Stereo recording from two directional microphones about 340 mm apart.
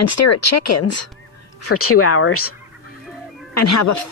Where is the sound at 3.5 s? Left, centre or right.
Left.